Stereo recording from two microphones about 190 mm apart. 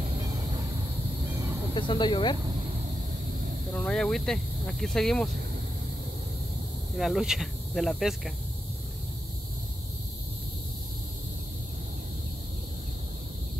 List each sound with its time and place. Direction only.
1.8 s speech: 25° left (ahead or behind)
3.7 s speech: 5° left (ahead or behind)
7.0 s speech: centre (ahead or behind)